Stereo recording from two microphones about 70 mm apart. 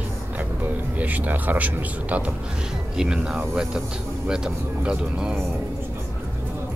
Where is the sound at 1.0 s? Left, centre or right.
Right.